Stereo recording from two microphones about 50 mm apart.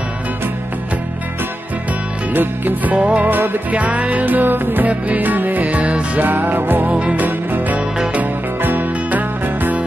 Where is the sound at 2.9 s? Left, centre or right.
Right.